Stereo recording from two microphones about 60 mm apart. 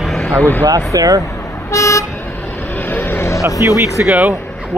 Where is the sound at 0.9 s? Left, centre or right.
Right.